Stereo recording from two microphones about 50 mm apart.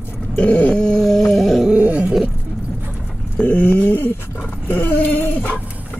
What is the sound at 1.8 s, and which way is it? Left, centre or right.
Wild animals, right.